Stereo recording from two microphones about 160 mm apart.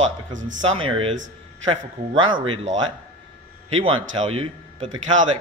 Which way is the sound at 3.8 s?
40° right (ahead or behind).